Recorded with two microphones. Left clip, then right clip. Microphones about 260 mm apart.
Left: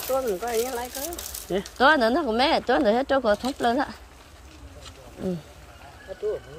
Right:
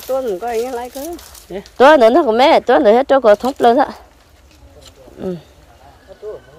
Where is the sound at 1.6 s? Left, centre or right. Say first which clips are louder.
Right 12 dB; centre.